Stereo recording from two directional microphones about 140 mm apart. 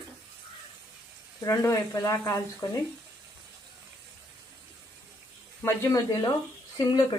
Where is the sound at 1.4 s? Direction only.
25° left (ahead or behind).